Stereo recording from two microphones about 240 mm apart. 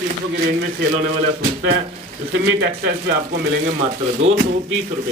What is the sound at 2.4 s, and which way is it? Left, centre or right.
Speech, right.